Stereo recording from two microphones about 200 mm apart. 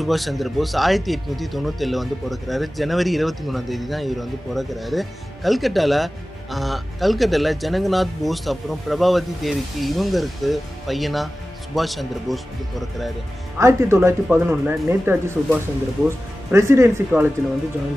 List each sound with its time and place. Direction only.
0.0 s speech: centre (ahead or behind)
13.6 s speech: 15° right (ahead or behind)